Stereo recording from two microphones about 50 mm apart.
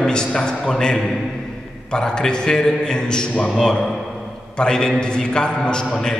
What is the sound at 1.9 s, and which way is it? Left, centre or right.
A man's voice, centre.